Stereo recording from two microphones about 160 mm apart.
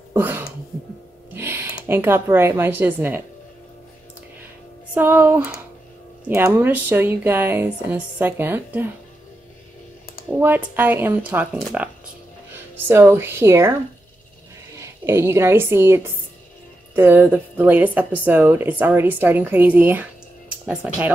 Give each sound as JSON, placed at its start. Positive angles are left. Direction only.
{"t": 0.2, "sound": "a sound", "side_deg": -10}
{"t": 1.9, "sound": "a woman's voice", "side_deg": -15}
{"t": 4.9, "sound": "a woman's voice", "side_deg": -10}
{"t": 10.4, "sound": "a woman's voice", "side_deg": -10}
{"t": 14.8, "sound": "a woman's voice", "side_deg": -15}